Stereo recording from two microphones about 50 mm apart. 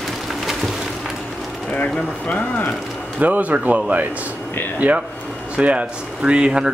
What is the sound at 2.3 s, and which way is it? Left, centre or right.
Speech, left.